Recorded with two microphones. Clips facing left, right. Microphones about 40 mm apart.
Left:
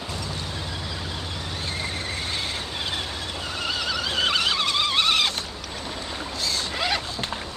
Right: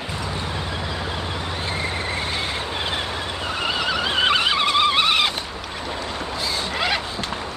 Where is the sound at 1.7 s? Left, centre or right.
Centre.